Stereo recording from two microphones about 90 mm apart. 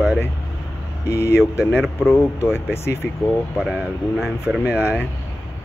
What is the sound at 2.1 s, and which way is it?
Speech, 25° left (ahead or behind).